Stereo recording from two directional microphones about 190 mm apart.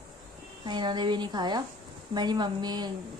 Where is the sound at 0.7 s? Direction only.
25° right (ahead or behind).